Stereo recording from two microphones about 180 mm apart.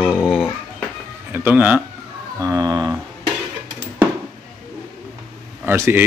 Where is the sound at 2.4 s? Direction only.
20° right (ahead or behind).